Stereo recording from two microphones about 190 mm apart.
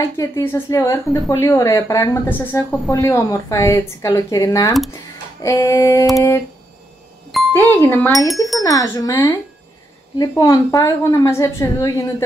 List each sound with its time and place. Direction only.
0.0 s speech: 15° left (ahead or behind)
8.5 s speech: 20° left (ahead or behind)